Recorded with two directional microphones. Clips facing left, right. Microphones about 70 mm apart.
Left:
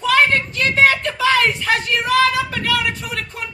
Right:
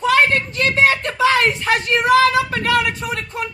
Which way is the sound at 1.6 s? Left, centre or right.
Right.